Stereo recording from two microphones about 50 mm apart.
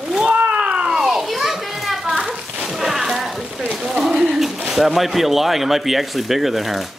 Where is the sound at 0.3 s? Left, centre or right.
Right.